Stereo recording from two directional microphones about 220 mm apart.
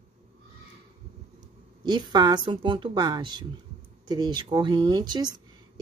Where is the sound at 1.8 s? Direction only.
20° right (ahead or behind).